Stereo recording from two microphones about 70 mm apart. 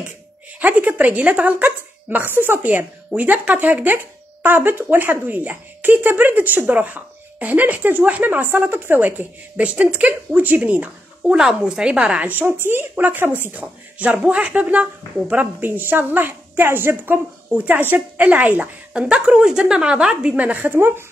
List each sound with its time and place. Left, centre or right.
0.6 s speech: right
11.3 s a woman's voice: centre
12.3 s speech: right
18.9 s a woman's voice: centre; by 21.0 s right